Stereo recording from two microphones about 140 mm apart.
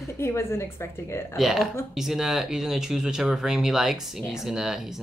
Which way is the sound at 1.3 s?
Centre (ahead or behind).